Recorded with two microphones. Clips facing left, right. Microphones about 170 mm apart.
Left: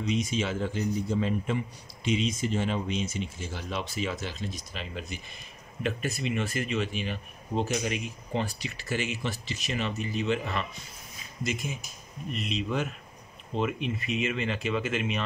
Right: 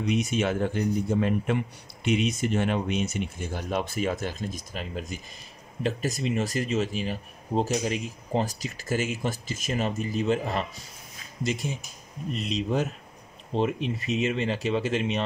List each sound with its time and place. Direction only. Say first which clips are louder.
0.0 s a man's voice: right 3 dB; 60° right (ahead or behind)
5.8 s speech: right 3 dB; 35° right (ahead or behind)